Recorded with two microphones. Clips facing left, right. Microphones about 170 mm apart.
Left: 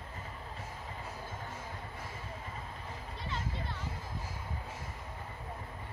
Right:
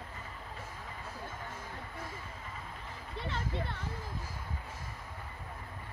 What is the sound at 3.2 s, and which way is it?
Music, 60° right (ahead or behind).